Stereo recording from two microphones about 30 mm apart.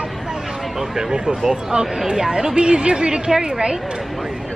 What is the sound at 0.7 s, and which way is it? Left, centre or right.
A woman's voice, centre.